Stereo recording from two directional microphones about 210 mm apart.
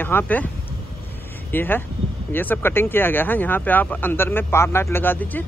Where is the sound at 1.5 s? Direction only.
10° left (ahead or behind).